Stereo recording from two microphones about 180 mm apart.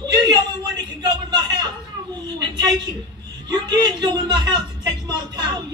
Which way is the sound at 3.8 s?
25° right (ahead or behind).